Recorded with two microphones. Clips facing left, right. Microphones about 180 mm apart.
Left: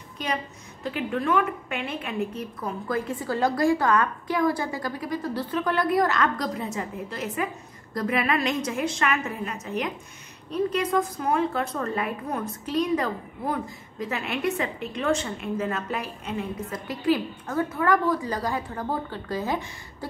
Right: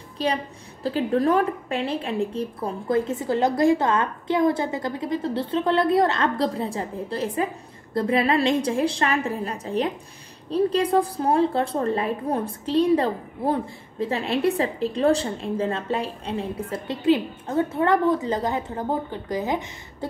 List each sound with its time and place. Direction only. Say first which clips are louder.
0.2 s a woman's voice: right 5 dB; 35° right (ahead or behind)